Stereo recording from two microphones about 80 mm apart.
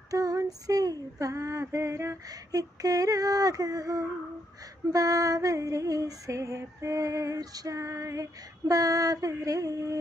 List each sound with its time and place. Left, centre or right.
0.1 s female singing: right